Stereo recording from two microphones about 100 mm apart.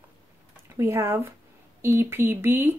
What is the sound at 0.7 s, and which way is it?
Speech, 30° right (ahead or behind).